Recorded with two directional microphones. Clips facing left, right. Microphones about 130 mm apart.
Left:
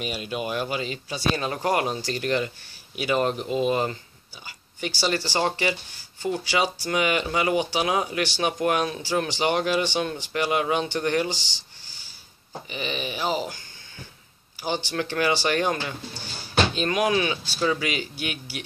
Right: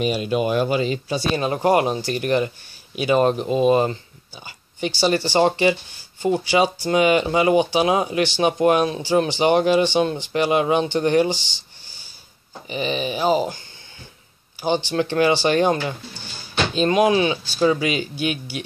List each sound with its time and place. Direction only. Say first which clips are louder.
0.0 s speech: right 9 dB; 30° right (ahead or behind)
1.3 s speech: right 7 dB; 20° right (ahead or behind)
4.5 s a sound: right 6 dB; 25° right (ahead or behind)
5.0 s speech: right 7 dB; 20° right (ahead or behind)
12.6 s speech: right 7 dB; 20° right (ahead or behind)
14.9 s speech: right 5 dB; 25° right (ahead or behind)